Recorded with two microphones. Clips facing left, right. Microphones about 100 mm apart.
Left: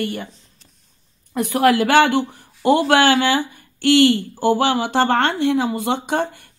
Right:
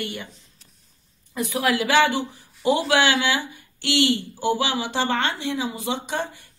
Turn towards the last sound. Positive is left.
turn(degrees=55)  # may be behind; listen again after turning